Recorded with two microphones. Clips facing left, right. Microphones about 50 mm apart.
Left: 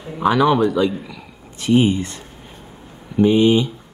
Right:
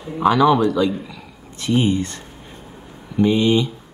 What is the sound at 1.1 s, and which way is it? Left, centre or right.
Speech, centre.